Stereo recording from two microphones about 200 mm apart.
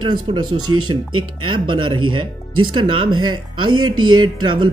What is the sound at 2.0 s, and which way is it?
Speech, 90° right.